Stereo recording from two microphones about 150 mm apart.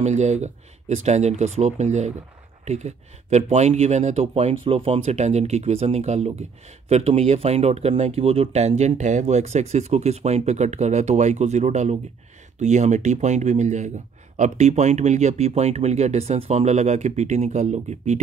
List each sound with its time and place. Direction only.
0.0 s speech: 50° right (ahead or behind)